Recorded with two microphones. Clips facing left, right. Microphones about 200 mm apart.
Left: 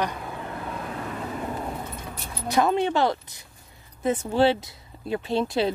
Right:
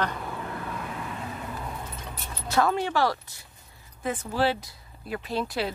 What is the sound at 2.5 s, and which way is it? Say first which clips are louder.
Speech: left 3 dB; 20° left (ahead or behind).